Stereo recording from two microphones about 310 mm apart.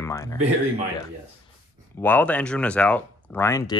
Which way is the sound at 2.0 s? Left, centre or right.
Centre.